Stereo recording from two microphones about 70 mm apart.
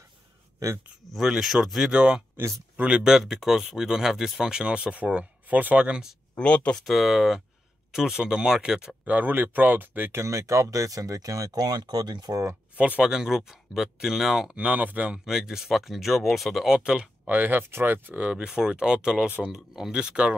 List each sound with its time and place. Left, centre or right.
0.6 s speech: right
1.1 s speech: centre
6.3 s speech: centre
6.8 s speech: centre
9.0 s speech: right
10.2 s speech: right
12.7 s speech: right
13.1 s speech: centre
15.2 s speech: centre
16.7 s speech: centre
17.3 s speech: right
18.2 s speech: centre